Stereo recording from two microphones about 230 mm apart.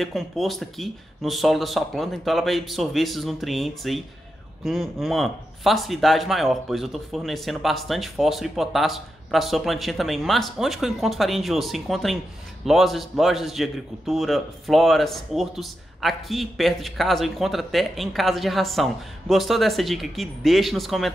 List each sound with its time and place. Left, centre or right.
0.0 s a man's voice: centre